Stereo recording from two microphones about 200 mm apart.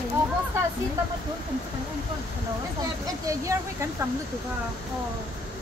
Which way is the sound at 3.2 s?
15° right (ahead or behind).